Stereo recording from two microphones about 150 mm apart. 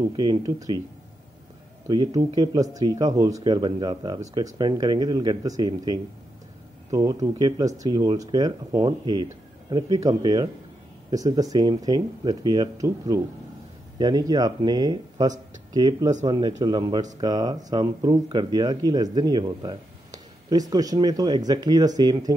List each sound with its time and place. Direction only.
0.1 s speech: 30° right (ahead or behind)
1.9 s speech: 30° right (ahead or behind)